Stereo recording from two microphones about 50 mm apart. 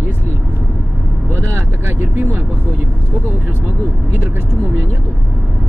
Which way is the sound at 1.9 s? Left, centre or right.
Right.